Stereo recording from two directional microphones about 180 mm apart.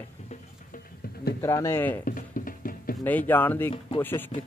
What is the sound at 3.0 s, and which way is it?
Speech, 10° left (ahead or behind).